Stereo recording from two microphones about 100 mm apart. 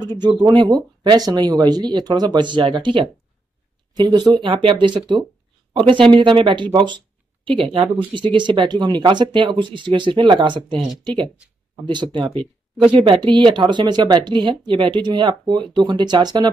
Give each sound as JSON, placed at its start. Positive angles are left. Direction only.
{"t": 0.0, "sound": "speech", "side_deg": -45}
{"t": 7.4, "sound": "speech", "side_deg": -65}
{"t": 11.8, "sound": "speech", "side_deg": -50}